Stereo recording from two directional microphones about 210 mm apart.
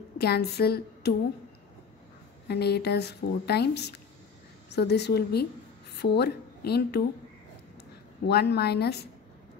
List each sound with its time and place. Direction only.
0.2 s speech: 50° left (ahead or behind)
2.4 s a woman's voice: 50° left (ahead or behind)
8.3 s speech: 50° left (ahead or behind)